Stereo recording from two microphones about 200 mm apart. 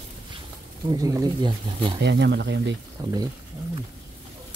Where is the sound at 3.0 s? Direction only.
20° right (ahead or behind).